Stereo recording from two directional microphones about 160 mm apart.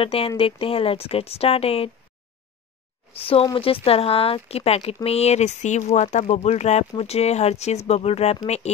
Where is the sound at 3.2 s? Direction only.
35° left (ahead or behind).